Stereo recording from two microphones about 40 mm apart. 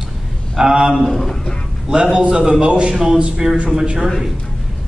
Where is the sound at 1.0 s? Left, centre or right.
Centre.